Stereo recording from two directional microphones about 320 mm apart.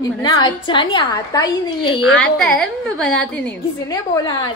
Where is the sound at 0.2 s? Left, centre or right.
Centre.